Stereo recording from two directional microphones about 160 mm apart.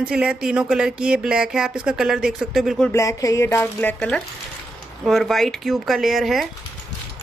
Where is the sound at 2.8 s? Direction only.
20° left (ahead or behind); by 6.5 s centre (ahead or behind).